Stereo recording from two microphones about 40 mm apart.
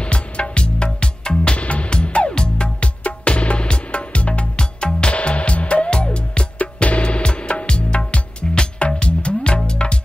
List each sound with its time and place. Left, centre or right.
0.0 s music: left